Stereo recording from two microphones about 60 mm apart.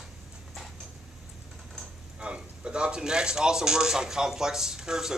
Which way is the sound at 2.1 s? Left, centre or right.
Centre.